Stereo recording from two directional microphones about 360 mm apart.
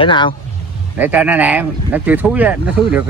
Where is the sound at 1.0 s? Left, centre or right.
Centre.